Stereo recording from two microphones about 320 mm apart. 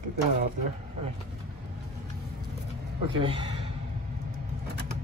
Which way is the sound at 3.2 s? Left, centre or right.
Centre.